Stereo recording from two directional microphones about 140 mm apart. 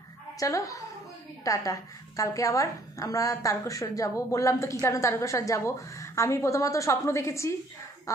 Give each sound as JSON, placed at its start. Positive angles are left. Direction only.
{"t": 0.4, "sound": "a woman's voice", "side_deg": 25}